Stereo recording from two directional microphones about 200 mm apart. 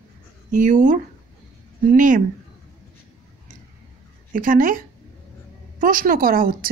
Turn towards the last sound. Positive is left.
turn(degrees=-45)  # may be behind; listen again after turning